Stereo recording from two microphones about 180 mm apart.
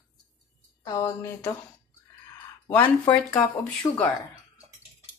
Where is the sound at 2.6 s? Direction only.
10° left (ahead or behind).